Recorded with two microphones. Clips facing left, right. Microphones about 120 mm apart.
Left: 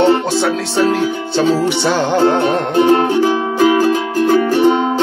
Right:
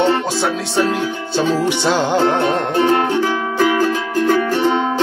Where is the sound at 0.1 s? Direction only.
20° left (ahead or behind).